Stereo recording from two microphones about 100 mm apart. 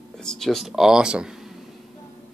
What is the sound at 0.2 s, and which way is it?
Speech, 5° left (ahead or behind).